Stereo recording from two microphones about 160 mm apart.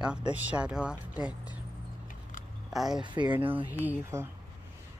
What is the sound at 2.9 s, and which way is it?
Speech, 30° right (ahead or behind).